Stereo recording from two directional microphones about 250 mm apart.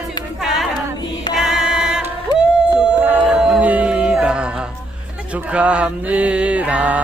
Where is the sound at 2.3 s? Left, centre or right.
Centre.